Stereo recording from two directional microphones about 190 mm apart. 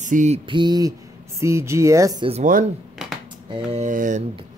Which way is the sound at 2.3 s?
40° right (ahead or behind).